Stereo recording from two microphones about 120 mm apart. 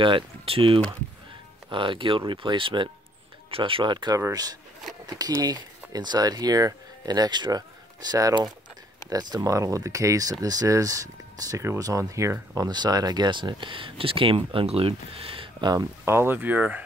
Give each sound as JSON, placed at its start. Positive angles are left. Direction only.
{"t": 0.0, "sound": "speech", "side_deg": -45}
{"t": 16.1, "sound": "speech", "side_deg": -20}